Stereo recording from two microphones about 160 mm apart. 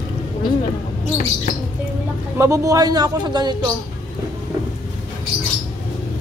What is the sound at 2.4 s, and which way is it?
A man's voice, 20° right (ahead or behind).